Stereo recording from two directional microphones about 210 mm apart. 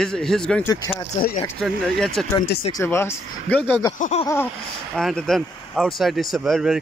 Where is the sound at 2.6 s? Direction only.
15° left (ahead or behind).